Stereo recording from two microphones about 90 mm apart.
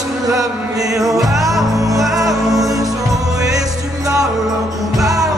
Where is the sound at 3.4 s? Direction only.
40° right (ahead or behind).